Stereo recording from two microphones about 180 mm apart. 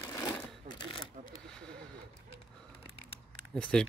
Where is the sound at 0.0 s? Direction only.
20° left (ahead or behind).